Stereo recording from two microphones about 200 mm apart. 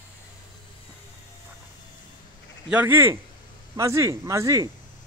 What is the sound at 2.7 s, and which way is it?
Speech, 10° right (ahead or behind).